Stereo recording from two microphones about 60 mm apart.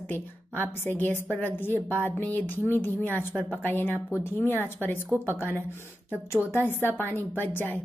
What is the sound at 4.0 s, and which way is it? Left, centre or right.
Speech, right.